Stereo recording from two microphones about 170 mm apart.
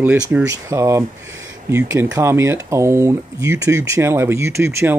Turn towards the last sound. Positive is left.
turn(degrees=-15)  # may be behind; listen again after turning